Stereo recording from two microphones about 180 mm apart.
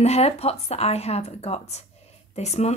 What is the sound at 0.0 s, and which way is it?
Speech, 35° left (ahead or behind).